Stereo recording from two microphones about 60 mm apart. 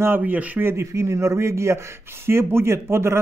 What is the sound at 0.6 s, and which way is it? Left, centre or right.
Speech, right.